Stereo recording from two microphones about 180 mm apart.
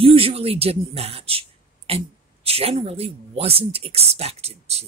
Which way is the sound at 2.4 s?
35° right (ahead or behind).